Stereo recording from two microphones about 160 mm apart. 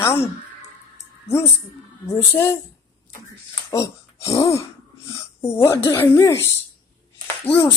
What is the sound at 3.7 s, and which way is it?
A woman's voice, 20° left (ahead or behind).